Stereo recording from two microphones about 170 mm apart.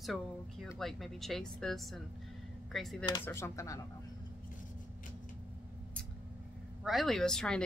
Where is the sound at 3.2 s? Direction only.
15° left (ahead or behind).